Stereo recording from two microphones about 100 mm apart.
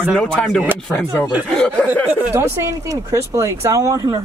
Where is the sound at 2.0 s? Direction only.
25° right (ahead or behind).